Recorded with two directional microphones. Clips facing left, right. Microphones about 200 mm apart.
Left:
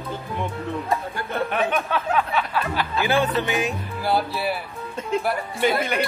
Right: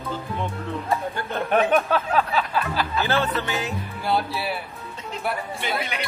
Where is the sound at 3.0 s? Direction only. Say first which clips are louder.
Left 4 dB; 15° left (ahead or behind).